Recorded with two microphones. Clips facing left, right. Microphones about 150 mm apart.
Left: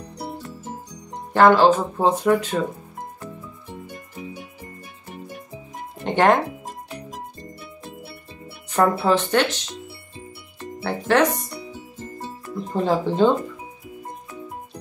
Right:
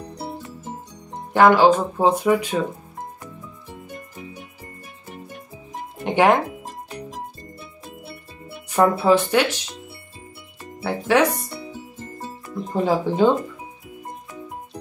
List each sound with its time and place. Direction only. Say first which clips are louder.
0.2 s music: left 2 dB; centre (ahead or behind)
1.3 s speech: even; 10° right (ahead or behind)
6.0 s speech: right 1 dB; 10° right (ahead or behind)
8.6 s music: right 1 dB; 10° right (ahead or behind)
9.0 s speech: right 2 dB; 10° right (ahead or behind)
12.7 s speech: even; 10° right (ahead or behind)